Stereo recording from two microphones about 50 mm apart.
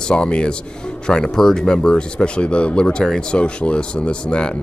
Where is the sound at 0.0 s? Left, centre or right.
Centre.